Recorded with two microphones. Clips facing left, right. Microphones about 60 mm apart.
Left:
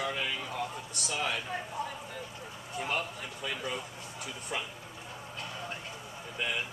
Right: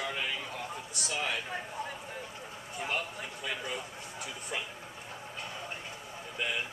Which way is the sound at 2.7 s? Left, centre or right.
Centre.